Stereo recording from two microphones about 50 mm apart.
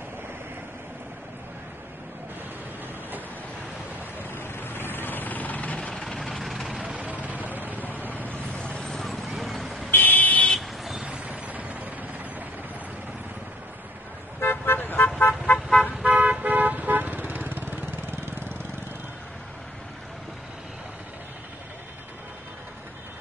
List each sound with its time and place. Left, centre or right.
4.2 s vehicle: left
5.8 s vehicle: centre
6.0 s vehicle: centre
6.8 s vehicle: right
7.2 s a sound: right
8.3 s vehicle: centre
8.8 s clip-clop: centre
9.8 s vehicle: left
10.5 s vehicle: centre
11.2 s a sound: right
14.4 s car: left
14.8 s vehicle: left
16.0 s vehicle: right